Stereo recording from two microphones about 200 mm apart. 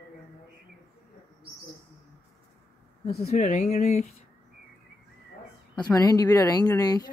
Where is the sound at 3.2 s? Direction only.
35° left (ahead or behind).